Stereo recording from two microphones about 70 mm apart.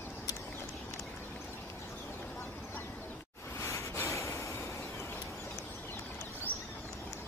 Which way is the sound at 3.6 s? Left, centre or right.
Left.